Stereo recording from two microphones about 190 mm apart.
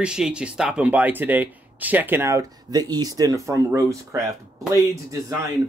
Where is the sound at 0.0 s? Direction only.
5° right (ahead or behind).